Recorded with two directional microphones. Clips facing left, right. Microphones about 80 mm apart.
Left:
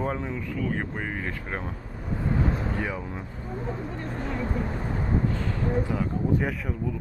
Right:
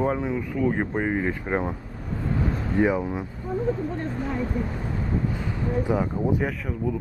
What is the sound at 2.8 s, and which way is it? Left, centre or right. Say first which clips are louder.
Speech: right 9 dB; centre.